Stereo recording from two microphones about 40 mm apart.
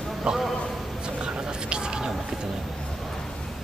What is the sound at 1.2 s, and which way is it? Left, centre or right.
Whispering, right.